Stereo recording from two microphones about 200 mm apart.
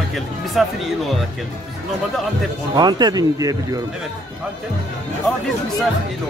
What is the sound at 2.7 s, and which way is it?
Speech, 20° right (ahead or behind).